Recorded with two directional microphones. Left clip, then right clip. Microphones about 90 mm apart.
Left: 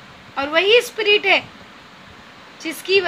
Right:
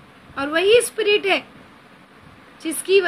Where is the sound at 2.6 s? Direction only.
30° right (ahead or behind).